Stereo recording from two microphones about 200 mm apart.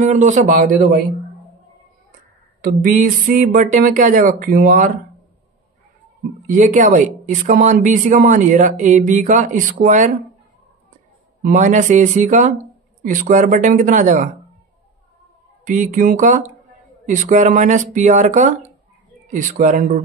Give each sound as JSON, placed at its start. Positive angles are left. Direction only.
{"t": 0.0, "sound": "speech", "side_deg": -40}
{"t": 2.6, "sound": "speech", "side_deg": -45}
{"t": 6.4, "sound": "speech", "side_deg": -40}
{"t": 11.4, "sound": "speech", "side_deg": -40}
{"t": 15.6, "sound": "speech", "side_deg": -40}